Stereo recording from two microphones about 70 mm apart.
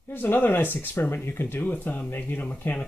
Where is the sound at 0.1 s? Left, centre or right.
Left.